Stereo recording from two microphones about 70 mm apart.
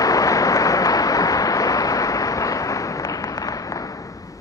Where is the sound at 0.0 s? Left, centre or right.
Left.